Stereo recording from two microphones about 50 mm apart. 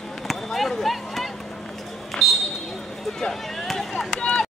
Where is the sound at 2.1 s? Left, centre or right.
Centre.